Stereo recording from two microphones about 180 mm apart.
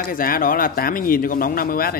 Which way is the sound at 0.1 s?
50° left (ahead or behind).